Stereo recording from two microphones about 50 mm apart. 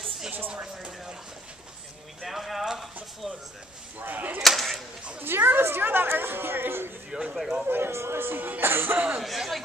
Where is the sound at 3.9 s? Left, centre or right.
Right.